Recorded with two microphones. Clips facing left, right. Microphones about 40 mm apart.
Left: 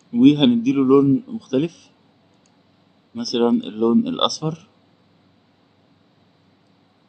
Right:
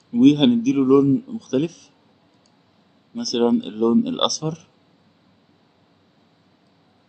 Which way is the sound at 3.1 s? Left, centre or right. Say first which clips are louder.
Left 1 dB; centre.